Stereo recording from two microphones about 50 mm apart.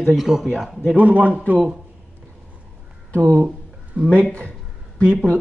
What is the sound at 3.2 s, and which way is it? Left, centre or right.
Speech, right.